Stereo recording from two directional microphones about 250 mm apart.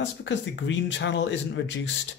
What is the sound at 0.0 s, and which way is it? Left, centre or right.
Speech, left.